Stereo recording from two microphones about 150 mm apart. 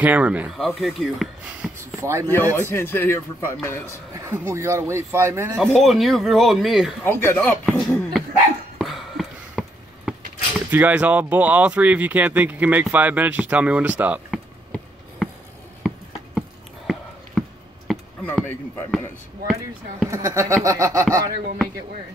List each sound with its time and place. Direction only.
0.0 s speech: 10° right (ahead or behind)
2.0 s speech: 15° right (ahead or behind)
2.5 s speech: 15° left (ahead or behind)
4.1 s speech: 20° right (ahead or behind)
5.7 s speech: centre (ahead or behind)
7.1 s speech: 15° left (ahead or behind)
8.7 s a sound: centre (ahead or behind)
10.7 s speech: 10° right (ahead or behind)
17.4 s a sound: centre (ahead or behind)
18.2 s speech: 15° left (ahead or behind)
18.9 s speech: centre (ahead or behind)
20.1 s speech: 20° right (ahead or behind)